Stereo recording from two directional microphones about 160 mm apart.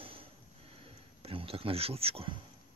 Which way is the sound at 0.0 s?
35° right (ahead or behind).